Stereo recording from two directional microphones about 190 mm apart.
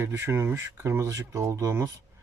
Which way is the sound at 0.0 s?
15° right (ahead or behind).